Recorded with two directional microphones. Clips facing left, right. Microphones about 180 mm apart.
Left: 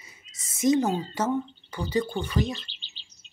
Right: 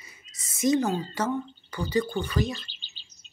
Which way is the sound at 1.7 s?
25° left (ahead or behind).